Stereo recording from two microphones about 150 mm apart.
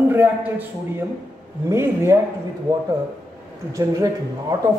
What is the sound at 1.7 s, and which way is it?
Speech, 15° right (ahead or behind).